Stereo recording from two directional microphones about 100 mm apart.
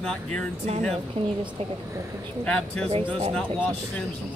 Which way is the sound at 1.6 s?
90° right.